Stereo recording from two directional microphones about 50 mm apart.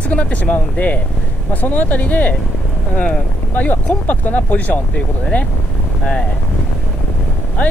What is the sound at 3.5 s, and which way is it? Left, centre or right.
Speech, left.